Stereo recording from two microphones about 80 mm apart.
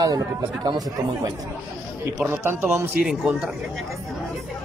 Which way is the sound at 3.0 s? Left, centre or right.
Centre.